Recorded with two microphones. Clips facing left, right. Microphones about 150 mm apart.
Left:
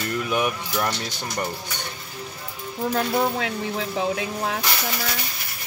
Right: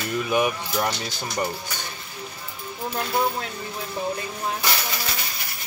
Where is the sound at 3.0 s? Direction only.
90° left.